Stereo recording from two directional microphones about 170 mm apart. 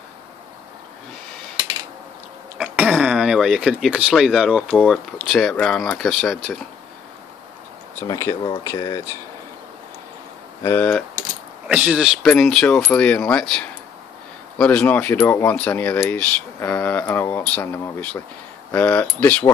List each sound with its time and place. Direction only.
2.6 s speech: 5° right (ahead or behind)
8.0 s speech: 20° left (ahead or behind)
10.6 s speech: 10° left (ahead or behind)
11.6 s speech: 5° right (ahead or behind); by 19.4 s 10° left (ahead or behind)